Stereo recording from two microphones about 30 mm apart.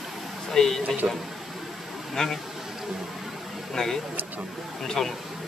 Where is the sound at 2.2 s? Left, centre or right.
Left.